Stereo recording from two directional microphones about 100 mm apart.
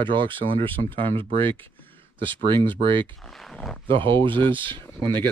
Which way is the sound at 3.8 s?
60° right (ahead or behind).